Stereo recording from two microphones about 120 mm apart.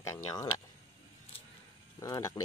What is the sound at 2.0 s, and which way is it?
Speech, 30° left (ahead or behind).